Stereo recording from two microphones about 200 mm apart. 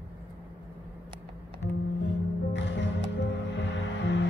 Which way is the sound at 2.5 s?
65° left (ahead or behind).